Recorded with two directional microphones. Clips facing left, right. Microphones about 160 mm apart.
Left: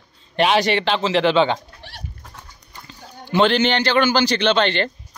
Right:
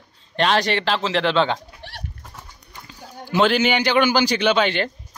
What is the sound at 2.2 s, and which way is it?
Speech, centre (ahead or behind).